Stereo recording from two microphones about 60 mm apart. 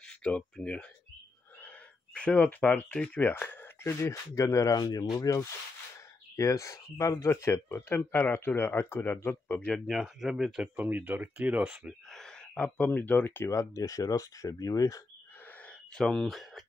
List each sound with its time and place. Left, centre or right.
0.2 s speech: centre
2.1 s speech: left
3.2 s speech: left
3.8 s speech: left
4.6 s speech: left
6.3 s speech: left
8.0 s speech: left
9.8 s speech: centre
10.8 s speech: right
12.1 s speech: centre; by 13.5 s left
13.5 s speech: left
15.9 s speech: centre